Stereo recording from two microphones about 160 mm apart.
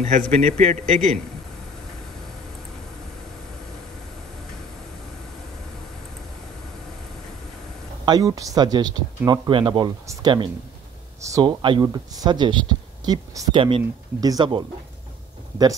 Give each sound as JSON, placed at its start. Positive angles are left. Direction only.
{"t": 0.0, "sound": "a man's voice", "side_deg": -45}
{"t": 8.0, "sound": "speech", "side_deg": -25}
{"t": 13.6, "sound": "speech", "side_deg": -35}